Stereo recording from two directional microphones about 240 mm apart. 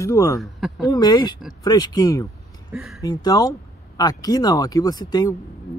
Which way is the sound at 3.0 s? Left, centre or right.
Centre.